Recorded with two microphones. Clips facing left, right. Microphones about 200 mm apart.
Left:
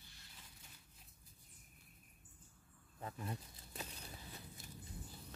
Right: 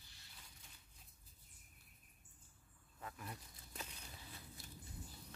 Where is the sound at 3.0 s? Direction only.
30° left (ahead or behind).